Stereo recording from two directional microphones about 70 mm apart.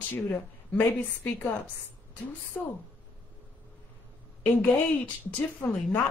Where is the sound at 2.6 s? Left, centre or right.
Left.